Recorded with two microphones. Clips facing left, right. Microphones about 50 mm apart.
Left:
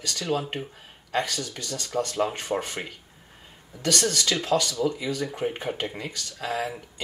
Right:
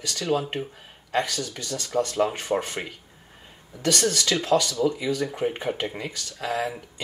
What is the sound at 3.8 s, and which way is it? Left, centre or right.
Speech, centre.